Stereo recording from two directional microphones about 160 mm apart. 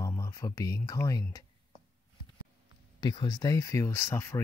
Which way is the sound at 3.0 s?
25° left (ahead or behind).